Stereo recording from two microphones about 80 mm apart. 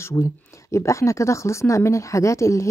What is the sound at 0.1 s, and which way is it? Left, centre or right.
A woman's voice, left.